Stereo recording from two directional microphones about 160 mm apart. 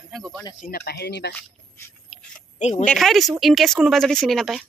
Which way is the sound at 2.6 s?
45° left (ahead or behind).